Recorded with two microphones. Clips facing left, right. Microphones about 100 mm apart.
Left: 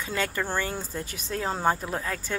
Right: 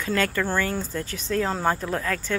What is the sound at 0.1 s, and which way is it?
Speech, 20° left (ahead or behind).